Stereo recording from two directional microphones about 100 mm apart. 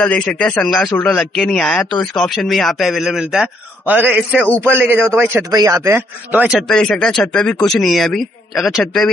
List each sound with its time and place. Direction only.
0.0 s speech: 10° left (ahead or behind); by 3.4 s 5° right (ahead or behind)
3.8 s a man's voice: 15° right (ahead or behind)
4.4 s speech: 15° left (ahead or behind)
4.6 s a man's voice: 20° right (ahead or behind)
5.5 s speech: 35° right (ahead or behind)
6.3 s a man's voice: 10° right (ahead or behind)
6.7 s speech: 5° left (ahead or behind)